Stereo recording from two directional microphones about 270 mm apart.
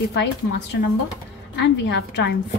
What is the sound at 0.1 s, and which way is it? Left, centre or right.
Speech, left.